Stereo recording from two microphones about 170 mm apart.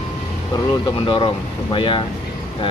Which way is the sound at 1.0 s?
30° left (ahead or behind).